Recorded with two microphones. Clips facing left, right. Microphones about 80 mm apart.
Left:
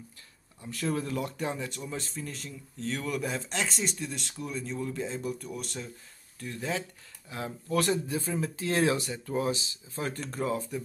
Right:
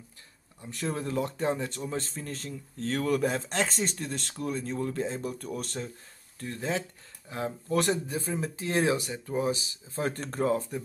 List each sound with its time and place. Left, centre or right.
0.6 s speech: right
6.4 s speech: right
9.9 s speech: right